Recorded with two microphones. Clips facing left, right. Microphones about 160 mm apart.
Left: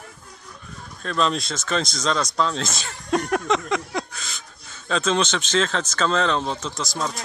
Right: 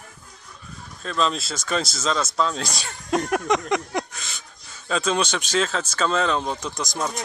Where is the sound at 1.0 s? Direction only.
Centre (ahead or behind).